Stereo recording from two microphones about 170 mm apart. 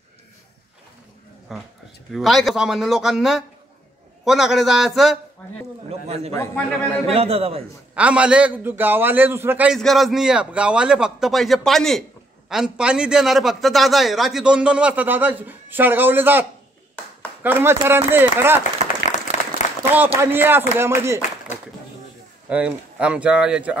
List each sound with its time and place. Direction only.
1.5 s a man's voice: centre (ahead or behind)
5.9 s a sound: 35° right (ahead or behind)
6.5 s a man's voice: 10° left (ahead or behind)
7.1 s a man's voice: 35° right (ahead or behind)
7.9 s a man's voice: 5° right (ahead or behind)
9.8 s a man's voice: centre (ahead or behind)
19.8 s a man's voice: 10° right (ahead or behind)
22.5 s a man's voice: 5° right (ahead or behind)